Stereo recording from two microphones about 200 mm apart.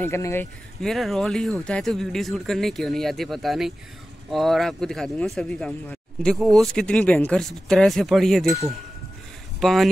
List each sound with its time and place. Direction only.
0.0 s speech: 10° left (ahead or behind)
0.7 s speech: centre (ahead or behind)
9.6 s speech: centre (ahead or behind)